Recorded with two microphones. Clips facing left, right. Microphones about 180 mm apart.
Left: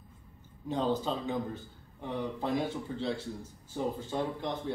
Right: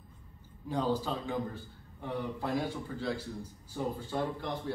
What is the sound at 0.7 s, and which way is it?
A man's voice, 20° left (ahead or behind).